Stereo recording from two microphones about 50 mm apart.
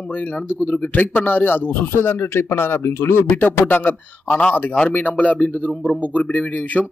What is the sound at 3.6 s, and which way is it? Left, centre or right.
Speech, left.